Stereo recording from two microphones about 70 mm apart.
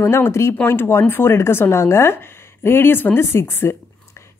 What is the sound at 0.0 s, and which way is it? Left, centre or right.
A woman's voice, left.